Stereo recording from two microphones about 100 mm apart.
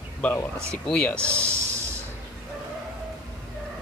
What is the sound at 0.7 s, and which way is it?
Speech, 10° left (ahead or behind).